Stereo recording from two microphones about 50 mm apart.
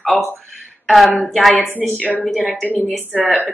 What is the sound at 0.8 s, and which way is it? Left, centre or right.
Speech, centre.